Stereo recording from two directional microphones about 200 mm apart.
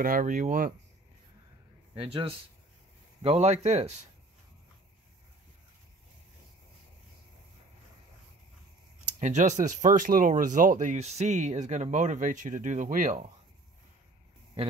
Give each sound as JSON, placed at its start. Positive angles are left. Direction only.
{"t": 0.0, "sound": "speech", "side_deg": -40}
{"t": 2.0, "sound": "a man's voice", "side_deg": -25}
{"t": 9.2, "sound": "speech", "side_deg": -40}